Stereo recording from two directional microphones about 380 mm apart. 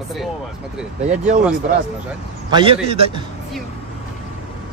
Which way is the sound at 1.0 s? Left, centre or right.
Centre.